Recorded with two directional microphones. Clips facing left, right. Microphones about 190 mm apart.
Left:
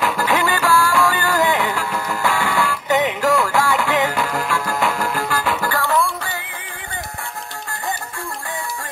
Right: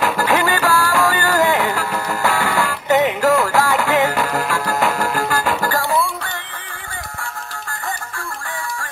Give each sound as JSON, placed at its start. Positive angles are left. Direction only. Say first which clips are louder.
{"t": 0.0, "sound": "music", "louder": "right 2 dB", "side_deg": -40}